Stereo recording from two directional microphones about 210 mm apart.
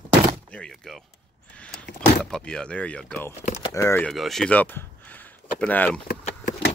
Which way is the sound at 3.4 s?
30° left (ahead or behind).